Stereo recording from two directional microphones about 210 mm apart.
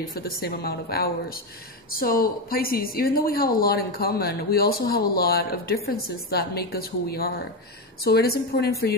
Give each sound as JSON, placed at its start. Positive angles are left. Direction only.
{"t": 0.1, "sound": "a woman's voice", "side_deg": 45}